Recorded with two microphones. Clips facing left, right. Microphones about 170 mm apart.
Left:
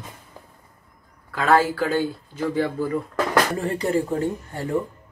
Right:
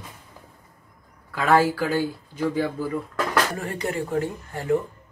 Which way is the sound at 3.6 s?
30° left (ahead or behind).